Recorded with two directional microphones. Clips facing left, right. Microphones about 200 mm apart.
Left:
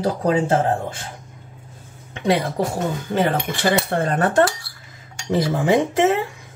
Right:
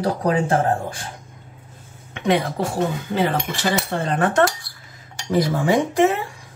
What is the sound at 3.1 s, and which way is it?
Cutlery, 55° left (ahead or behind).